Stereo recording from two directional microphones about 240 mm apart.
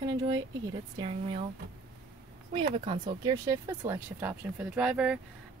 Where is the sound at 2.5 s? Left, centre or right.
Right.